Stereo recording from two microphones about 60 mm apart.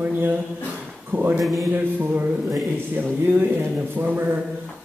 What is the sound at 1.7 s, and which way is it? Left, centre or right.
Speech, right.